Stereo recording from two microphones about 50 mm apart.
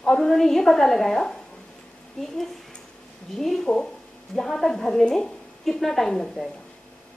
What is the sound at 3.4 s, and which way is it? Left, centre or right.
A woman's voice, centre.